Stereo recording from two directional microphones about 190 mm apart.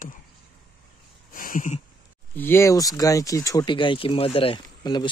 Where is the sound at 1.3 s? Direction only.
45° left (ahead or behind).